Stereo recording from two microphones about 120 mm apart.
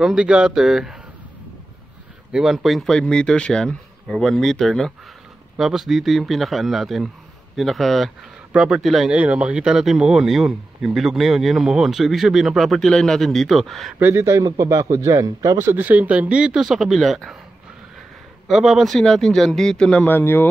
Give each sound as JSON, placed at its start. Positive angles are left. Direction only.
{"t": 0.0, "sound": "speech", "side_deg": -5}
{"t": 2.3, "sound": "speech", "side_deg": -5}
{"t": 13.9, "sound": "a man's voice", "side_deg": -20}
{"t": 18.5, "sound": "speech", "side_deg": 0}